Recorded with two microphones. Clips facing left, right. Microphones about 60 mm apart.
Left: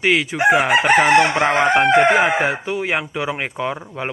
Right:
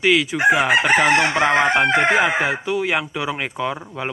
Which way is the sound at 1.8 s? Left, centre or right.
Left.